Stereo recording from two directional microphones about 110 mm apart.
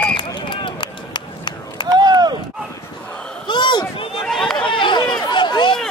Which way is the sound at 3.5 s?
45° left (ahead or behind).